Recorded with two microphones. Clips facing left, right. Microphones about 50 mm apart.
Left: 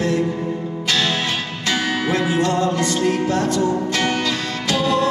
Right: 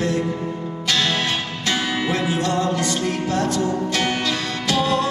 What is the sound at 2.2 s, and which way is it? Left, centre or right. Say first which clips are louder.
Music: left 2 dB; left.